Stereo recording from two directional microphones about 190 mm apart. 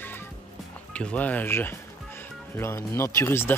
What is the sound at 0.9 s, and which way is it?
Speech, 5° left (ahead or behind).